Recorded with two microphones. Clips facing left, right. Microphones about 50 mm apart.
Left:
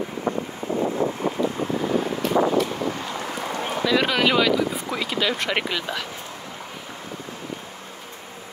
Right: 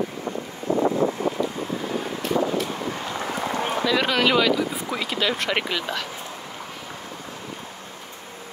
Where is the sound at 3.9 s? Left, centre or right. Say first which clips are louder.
Left 1 dB; centre.